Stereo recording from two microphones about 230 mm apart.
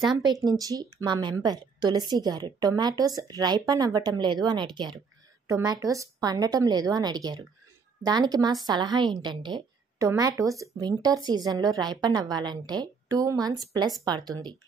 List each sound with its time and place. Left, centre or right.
0.6 s a woman's voice: centre